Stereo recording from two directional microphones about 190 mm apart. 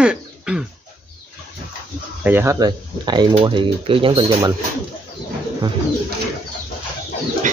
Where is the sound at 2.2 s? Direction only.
15° right (ahead or behind); by 4.4 s 30° right (ahead or behind).